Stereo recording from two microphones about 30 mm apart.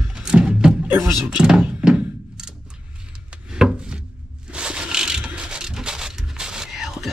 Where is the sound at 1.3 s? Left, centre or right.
Right.